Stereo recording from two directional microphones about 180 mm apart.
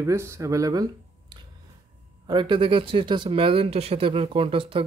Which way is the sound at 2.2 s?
25° right (ahead or behind).